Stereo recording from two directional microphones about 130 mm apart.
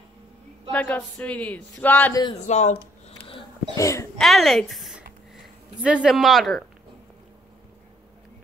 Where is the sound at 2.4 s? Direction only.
65° left (ahead or behind).